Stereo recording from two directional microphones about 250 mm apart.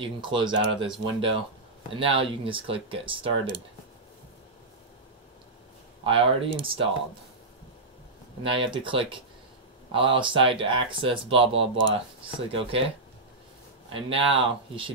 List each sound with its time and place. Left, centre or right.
0.0 s speech: centre
6.0 s speech: right
8.5 s speech: right
13.9 s speech: right